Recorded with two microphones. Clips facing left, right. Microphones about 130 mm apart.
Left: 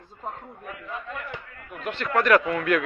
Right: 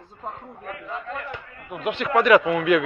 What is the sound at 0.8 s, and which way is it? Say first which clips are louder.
Speech: right 3 dB; 15° right (ahead or behind).